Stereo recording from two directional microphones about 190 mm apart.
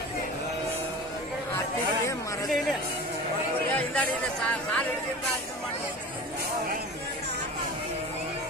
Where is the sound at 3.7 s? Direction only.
5° left (ahead or behind).